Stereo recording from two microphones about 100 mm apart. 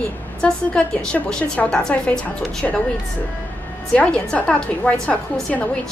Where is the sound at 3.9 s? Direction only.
10° left (ahead or behind).